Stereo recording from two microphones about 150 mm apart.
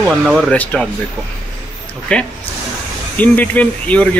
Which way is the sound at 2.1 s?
5° left (ahead or behind).